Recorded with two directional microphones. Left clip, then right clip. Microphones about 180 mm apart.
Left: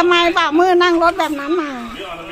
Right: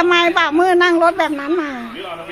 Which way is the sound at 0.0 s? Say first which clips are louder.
Even; 10° right (ahead or behind).